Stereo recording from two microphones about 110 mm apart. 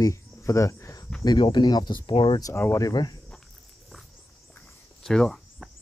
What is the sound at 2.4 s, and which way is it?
Speech, 25° left (ahead or behind).